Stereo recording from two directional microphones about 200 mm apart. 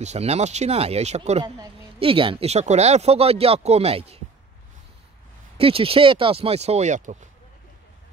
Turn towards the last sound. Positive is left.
turn(degrees=-35)  # may be behind; listen again after turning